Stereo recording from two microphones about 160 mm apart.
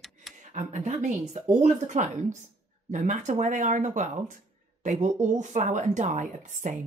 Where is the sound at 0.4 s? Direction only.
50° right (ahead or behind).